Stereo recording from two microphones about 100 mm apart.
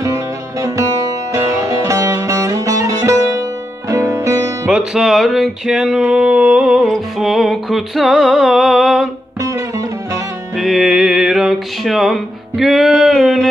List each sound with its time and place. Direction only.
0.0 s music: 30° right (ahead or behind)
4.6 s music: 5° right (ahead or behind)
9.4 s music: 35° right (ahead or behind)
10.5 s music: centre (ahead or behind)